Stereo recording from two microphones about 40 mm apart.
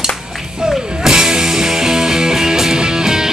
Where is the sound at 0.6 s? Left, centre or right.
Centre.